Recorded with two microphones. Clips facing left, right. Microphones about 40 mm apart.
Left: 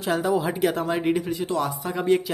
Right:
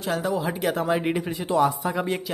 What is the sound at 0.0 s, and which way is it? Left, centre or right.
Speech, centre.